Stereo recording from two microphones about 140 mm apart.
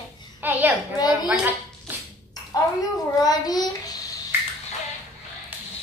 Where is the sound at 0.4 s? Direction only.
15° right (ahead or behind).